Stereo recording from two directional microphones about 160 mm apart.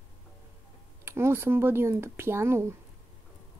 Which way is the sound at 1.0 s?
15° right (ahead or behind).